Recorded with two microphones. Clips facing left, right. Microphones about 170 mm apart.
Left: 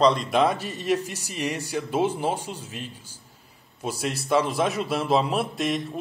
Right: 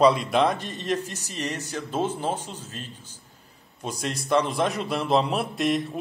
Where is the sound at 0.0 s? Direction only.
Centre (ahead or behind).